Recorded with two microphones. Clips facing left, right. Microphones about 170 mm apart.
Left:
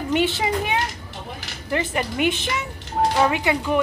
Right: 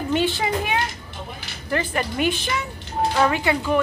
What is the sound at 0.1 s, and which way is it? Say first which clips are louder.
A woman's voice: left 1 dB; 20° left (ahead or behind).